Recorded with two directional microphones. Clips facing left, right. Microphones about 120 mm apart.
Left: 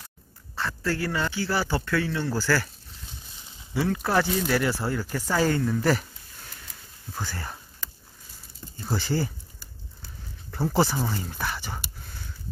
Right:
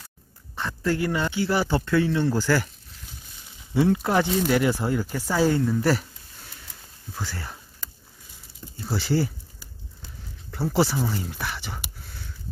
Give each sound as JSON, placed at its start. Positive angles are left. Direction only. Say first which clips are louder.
{"t": 0.6, "sound": "speech", "louder": "right 3 dB", "side_deg": -20}
{"t": 3.7, "sound": "a woman's voice", "louder": "right 3 dB", "side_deg": -20}
{"t": 7.2, "sound": "speech", "louder": "even", "side_deg": 0}
{"t": 8.7, "sound": "speech", "louder": "right 3 dB", "side_deg": -5}
{"t": 10.5, "sound": "speech", "louder": "right 1 dB", "side_deg": 0}